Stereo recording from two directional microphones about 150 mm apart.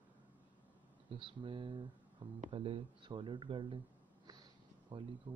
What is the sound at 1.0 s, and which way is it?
Speech, 35° right (ahead or behind).